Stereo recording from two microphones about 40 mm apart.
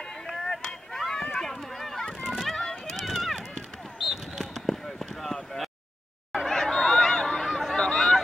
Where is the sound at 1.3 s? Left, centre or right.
Centre.